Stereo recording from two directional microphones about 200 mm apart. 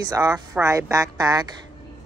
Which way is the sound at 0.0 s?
15° right (ahead or behind).